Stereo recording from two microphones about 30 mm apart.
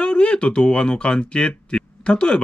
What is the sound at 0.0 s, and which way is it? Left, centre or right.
Speech, left.